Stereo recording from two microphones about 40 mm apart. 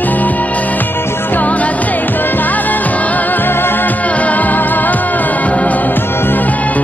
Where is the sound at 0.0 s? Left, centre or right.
Left.